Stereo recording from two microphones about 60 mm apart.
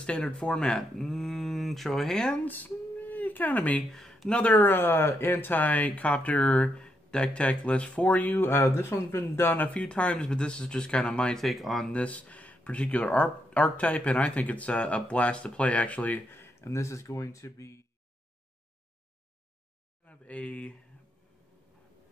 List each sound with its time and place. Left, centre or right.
0.0 s speech: centre
2.4 s speech: left
3.9 s speech: centre
4.3 s speech: left
4.6 s speech: left
9.8 s speech: centre
11.4 s speech: centre
11.9 s speech: left
20.1 s speech: left